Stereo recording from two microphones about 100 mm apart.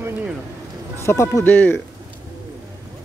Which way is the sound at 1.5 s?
20° left (ahead or behind).